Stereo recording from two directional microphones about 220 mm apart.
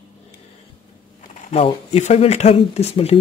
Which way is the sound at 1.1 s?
30° left (ahead or behind).